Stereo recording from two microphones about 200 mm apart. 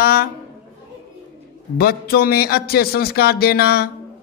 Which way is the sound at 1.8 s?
50° left (ahead or behind).